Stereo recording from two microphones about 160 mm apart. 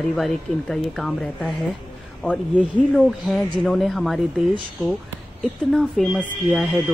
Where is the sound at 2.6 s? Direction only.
Centre (ahead or behind).